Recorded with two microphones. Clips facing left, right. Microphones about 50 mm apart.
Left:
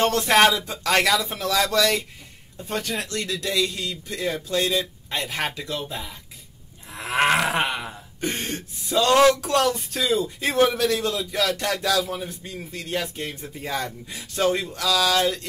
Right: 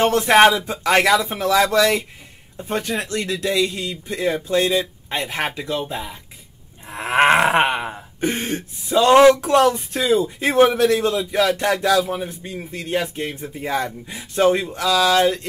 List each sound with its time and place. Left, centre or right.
0.0 s speech: centre
6.9 s cattle: right
8.4 s speech: centre